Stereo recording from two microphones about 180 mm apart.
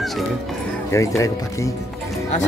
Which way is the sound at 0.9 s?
15° left (ahead or behind).